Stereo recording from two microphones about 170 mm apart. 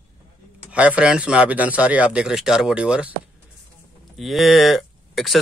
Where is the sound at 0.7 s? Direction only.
5° right (ahead or behind).